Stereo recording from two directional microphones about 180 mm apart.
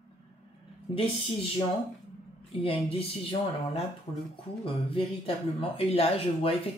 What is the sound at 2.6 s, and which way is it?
Speech, 30° left (ahead or behind).